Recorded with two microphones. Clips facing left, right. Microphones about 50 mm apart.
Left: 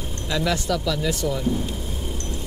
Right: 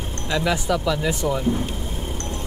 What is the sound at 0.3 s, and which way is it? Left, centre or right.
Speech, centre.